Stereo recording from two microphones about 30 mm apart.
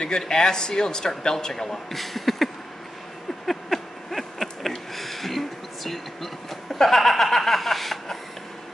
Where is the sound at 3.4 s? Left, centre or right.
Centre.